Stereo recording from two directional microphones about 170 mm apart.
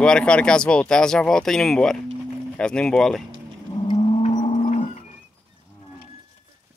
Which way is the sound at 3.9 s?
40° left (ahead or behind).